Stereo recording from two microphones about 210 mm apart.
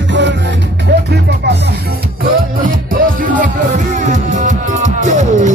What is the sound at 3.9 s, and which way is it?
Music, 35° right (ahead or behind).